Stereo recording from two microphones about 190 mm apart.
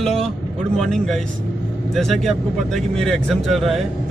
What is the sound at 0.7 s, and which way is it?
Speech, centre (ahead or behind).